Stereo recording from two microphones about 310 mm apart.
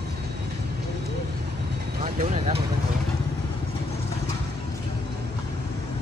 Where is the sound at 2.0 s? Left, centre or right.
Centre.